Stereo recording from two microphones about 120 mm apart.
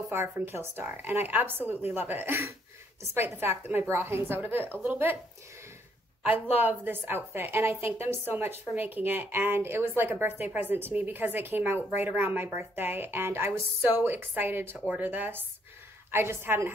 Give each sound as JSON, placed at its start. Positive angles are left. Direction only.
{"t": 0.1, "sound": "a woman's voice", "side_deg": -20}
{"t": 6.4, "sound": "a woman's voice", "side_deg": -15}